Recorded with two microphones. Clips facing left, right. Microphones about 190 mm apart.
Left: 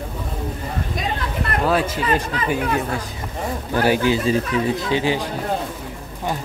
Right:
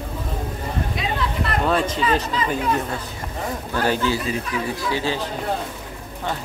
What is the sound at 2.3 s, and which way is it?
Speech, 60° left (ahead or behind).